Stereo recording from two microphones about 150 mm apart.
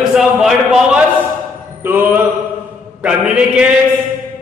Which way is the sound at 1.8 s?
15° right (ahead or behind).